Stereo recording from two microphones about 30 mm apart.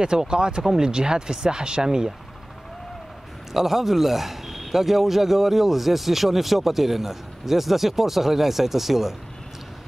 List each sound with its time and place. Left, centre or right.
0.3 s speech: right
3.5 s a man's voice: centre